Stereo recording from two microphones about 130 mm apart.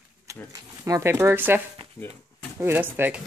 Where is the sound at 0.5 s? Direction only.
20° right (ahead or behind).